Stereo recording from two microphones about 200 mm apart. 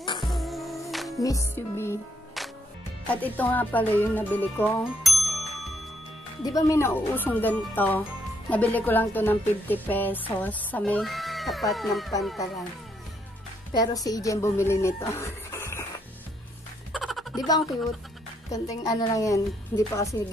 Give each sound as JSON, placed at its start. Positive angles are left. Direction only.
{"t": 0.2, "sound": "music", "side_deg": 0}
{"t": 1.2, "sound": "speech", "side_deg": 15}
{"t": 2.4, "sound": "music", "side_deg": 0}
{"t": 6.4, "sound": "speech", "side_deg": 15}
{"t": 13.7, "sound": "speech", "side_deg": 20}
{"t": 16.9, "sound": "music", "side_deg": 0}
{"t": 18.5, "sound": "speech", "side_deg": 15}